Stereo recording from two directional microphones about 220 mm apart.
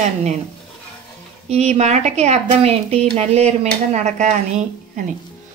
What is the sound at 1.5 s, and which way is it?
A woman's voice, 30° right (ahead or behind).